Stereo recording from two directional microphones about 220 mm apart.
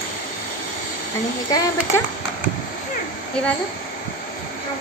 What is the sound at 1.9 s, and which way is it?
Speech, 10° left (ahead or behind).